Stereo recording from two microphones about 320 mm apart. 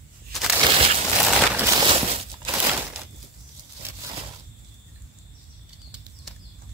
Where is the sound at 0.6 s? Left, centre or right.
Centre.